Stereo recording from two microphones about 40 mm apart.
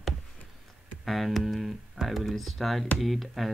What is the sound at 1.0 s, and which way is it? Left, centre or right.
Speech, centre.